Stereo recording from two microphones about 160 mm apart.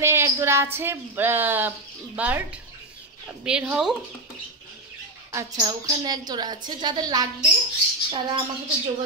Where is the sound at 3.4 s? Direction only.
5° right (ahead or behind).